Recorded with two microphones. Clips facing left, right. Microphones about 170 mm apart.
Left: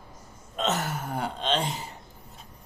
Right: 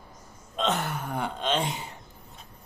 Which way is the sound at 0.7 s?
55° right (ahead or behind).